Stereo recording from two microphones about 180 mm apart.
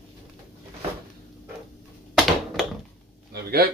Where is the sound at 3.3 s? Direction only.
60° right (ahead or behind).